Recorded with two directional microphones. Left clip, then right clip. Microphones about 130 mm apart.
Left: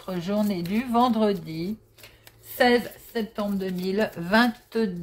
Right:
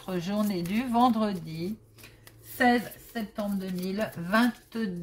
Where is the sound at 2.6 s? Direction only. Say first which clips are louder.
Left 4 dB; 55° left (ahead or behind).